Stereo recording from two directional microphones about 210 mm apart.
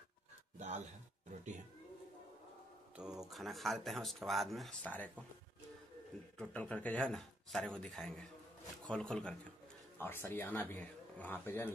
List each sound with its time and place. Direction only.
0.6 s a sound: 30° right (ahead or behind)
3.0 s speech: 5° right (ahead or behind)
6.3 s speech: 5° left (ahead or behind)